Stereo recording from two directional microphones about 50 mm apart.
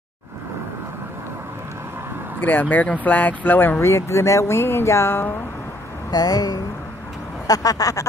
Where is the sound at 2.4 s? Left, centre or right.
Left.